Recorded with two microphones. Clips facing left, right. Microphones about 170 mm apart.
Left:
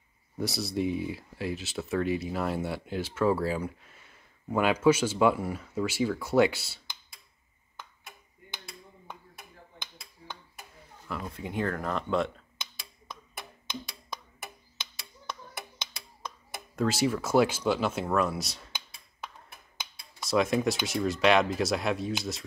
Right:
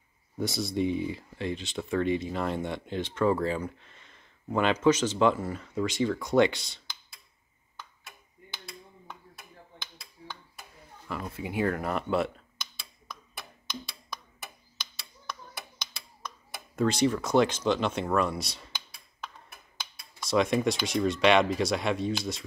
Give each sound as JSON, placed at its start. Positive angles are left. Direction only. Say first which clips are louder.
{"t": 0.4, "sound": "speech", "louder": "right 1 dB", "side_deg": 0}
{"t": 9.8, "sound": "finger snapping", "louder": "even", "side_deg": 20}
{"t": 11.1, "sound": "speech", "louder": "right 1 dB", "side_deg": -5}
{"t": 16.7, "sound": "speech", "louder": "right 2 dB", "side_deg": 5}
{"t": 20.2, "sound": "speech", "louder": "right 1 dB", "side_deg": 0}